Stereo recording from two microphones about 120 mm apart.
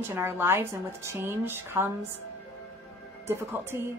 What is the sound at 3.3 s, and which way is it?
Speech, 20° right (ahead or behind).